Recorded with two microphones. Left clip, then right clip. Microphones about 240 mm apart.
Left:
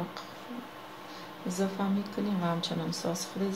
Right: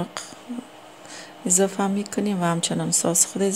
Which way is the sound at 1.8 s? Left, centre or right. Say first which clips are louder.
Right 8 dB; right.